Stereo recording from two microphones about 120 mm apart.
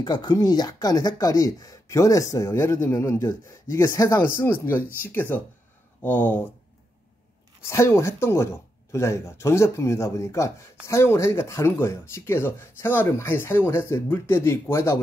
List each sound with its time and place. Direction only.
0.0 s speech: 35° left (ahead or behind); by 6.4 s 15° left (ahead or behind)
7.6 s speech: 25° left (ahead or behind)